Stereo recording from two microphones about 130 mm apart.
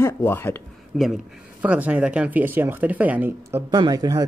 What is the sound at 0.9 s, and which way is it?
Speech, 5° right (ahead or behind).